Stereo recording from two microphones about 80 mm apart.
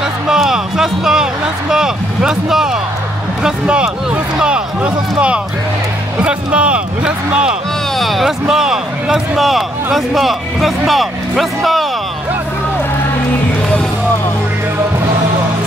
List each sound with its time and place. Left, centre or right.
0.3 s speech: centre
8.0 s speech: centre